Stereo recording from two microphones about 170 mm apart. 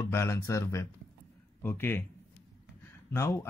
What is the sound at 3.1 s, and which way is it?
Speech, 15° left (ahead or behind).